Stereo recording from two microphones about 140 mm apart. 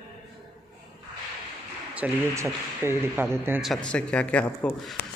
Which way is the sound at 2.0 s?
10° right (ahead or behind).